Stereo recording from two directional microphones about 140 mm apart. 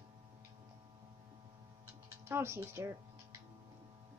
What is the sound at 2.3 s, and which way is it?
Speech, 20° right (ahead or behind).